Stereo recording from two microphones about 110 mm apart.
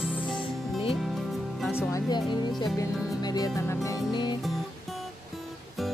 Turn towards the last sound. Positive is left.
turn(degrees=40)  # may be behind; listen again after turning